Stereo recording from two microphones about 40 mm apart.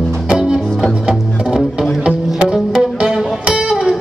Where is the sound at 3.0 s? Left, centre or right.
Centre.